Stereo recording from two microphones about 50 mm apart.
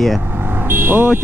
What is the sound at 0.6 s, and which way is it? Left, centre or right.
Speech, right.